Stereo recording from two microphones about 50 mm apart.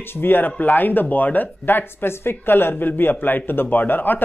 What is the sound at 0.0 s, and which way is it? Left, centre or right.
Speech, left.